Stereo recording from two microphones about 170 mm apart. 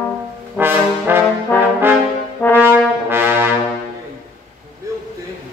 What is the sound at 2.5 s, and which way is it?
Brass instrument, 10° right (ahead or behind).